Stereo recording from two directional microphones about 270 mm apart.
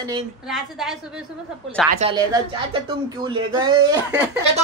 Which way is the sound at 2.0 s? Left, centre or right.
Centre.